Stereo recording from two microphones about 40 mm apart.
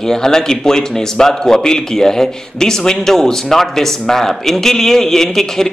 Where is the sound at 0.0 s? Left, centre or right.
Centre.